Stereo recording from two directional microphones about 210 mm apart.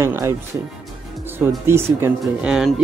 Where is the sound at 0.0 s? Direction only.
15° right (ahead or behind).